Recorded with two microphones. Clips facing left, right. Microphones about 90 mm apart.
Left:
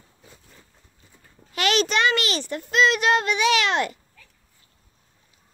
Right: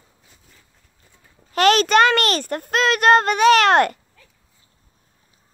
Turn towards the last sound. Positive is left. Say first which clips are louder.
# right 8 dB
turn(degrees=-50)  # may be behind; listen again after turning